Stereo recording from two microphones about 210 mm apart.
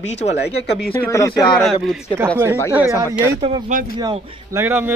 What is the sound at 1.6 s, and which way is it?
Speech, centre (ahead or behind).